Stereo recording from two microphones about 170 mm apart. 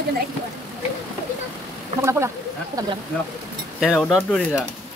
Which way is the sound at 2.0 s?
15° right (ahead or behind).